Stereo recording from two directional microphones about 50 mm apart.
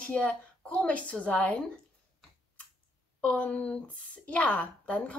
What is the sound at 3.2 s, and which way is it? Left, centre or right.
A woman's voice, left.